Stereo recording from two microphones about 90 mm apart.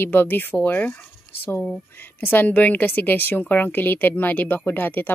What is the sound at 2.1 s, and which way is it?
Speech, 20° left (ahead or behind).